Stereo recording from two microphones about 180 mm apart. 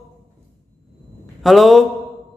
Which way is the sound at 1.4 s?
Centre (ahead or behind).